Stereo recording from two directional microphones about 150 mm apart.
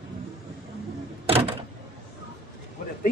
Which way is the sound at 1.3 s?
40° right (ahead or behind).